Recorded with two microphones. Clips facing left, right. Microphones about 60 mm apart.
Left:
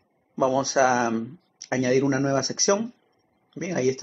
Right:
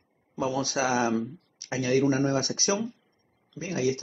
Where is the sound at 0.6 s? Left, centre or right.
Left.